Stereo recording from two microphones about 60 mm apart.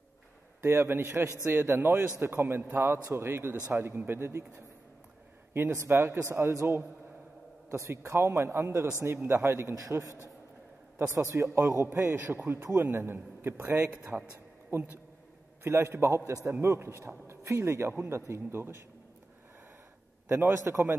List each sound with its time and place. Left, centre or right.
0.6 s a man's voice: right
5.9 s a man's voice: right
9.8 s a man's voice: right
11.1 s a man's voice: right
20.2 s speech: right